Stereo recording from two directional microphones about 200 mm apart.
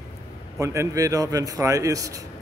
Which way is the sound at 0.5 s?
15° right (ahead or behind).